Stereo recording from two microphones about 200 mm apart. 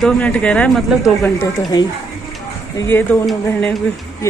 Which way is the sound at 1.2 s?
15° left (ahead or behind).